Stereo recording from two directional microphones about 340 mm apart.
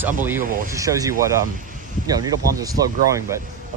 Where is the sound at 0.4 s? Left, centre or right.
Right.